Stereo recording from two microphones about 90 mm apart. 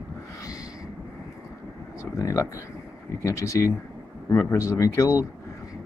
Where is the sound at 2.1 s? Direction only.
35° left (ahead or behind).